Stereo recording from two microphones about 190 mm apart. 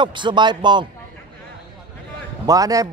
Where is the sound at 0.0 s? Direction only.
25° right (ahead or behind).